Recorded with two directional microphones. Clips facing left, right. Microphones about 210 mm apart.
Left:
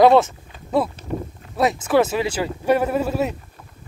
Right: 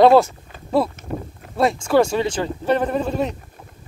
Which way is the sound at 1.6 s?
5° left (ahead or behind).